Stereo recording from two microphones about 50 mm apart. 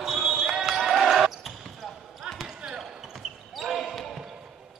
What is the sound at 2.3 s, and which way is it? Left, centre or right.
Basketball bounce, centre.